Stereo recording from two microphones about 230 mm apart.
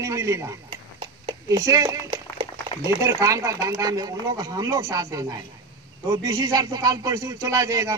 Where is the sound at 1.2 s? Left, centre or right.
Centre.